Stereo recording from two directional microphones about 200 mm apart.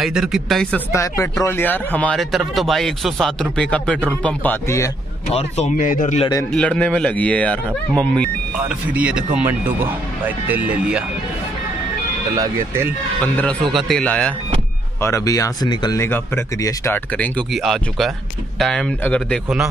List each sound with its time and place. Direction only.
0.0 s speech: centre (ahead or behind); by 4.9 s 15° left (ahead or behind)
5.3 s speech: 35° left (ahead or behind)
6.5 s speech: 5° left (ahead or behind)
8.6 s speech: 5° right (ahead or behind)
12.4 s speech: 10° right (ahead or behind)
13.2 s speech: 10° left (ahead or behind)